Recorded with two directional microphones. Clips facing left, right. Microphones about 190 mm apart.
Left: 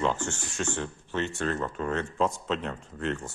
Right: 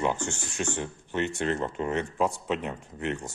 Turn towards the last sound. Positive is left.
turn(degrees=-15)  # may be behind; listen again after turning